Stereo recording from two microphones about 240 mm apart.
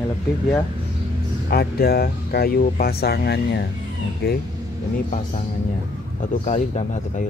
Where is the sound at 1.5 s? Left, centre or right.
Left.